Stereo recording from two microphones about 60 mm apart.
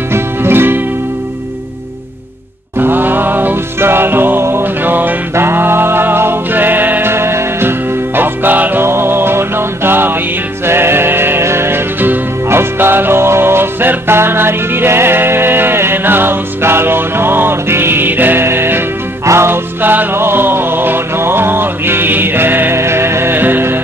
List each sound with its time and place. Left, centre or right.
0.1 s music: right
2.8 s music: right
8.2 s music: right